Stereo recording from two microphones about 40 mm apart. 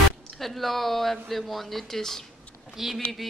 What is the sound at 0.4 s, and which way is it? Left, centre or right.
A woman's voice, centre.